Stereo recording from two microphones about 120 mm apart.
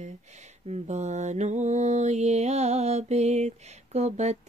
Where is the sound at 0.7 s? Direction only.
70° right (ahead or behind).